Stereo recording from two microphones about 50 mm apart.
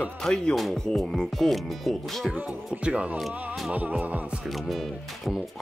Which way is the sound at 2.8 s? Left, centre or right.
Right.